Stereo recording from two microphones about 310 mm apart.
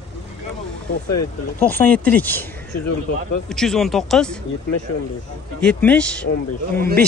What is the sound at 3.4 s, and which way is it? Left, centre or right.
Speech, centre.